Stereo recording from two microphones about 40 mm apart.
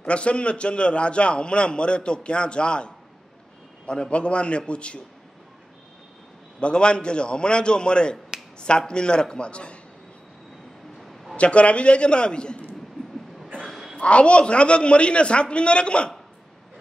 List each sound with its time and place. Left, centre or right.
0.0 s a man's voice: left
6.6 s a man's voice: left
11.0 s a sound: centre
11.3 s a man's voice: left
13.7 s a sound: centre
13.9 s a man's voice: left